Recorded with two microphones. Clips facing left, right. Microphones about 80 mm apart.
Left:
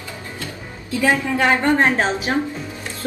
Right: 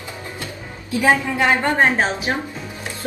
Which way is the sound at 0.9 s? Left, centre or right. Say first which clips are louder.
Right 1 dB; centre.